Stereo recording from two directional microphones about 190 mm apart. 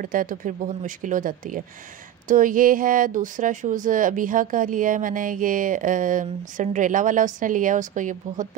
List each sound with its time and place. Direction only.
0.0 s speech: 45° right (ahead or behind)